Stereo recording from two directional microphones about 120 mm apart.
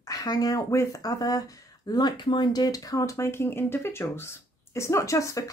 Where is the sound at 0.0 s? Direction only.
30° left (ahead or behind).